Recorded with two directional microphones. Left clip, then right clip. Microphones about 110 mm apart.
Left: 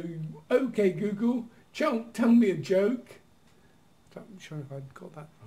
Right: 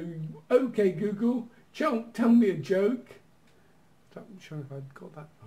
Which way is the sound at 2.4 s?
5° right (ahead or behind).